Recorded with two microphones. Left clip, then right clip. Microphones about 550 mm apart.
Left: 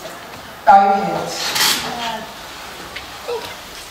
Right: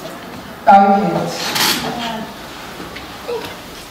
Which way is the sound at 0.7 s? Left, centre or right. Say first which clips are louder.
Right 1 dB; centre.